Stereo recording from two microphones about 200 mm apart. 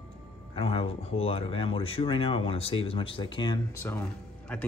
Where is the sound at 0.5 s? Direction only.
25° left (ahead or behind).